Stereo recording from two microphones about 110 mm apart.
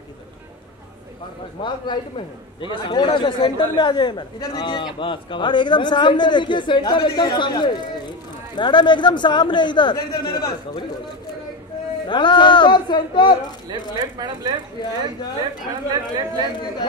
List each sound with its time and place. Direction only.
1.6 s a man's voice: 45° left (ahead or behind)
12.1 s a man's voice: 45° left (ahead or behind)
14.1 s speech: 40° right (ahead or behind)
15.9 s speech: 40° right (ahead or behind)